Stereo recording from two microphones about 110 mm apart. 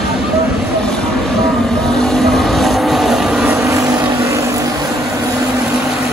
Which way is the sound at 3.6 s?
30° right (ahead or behind).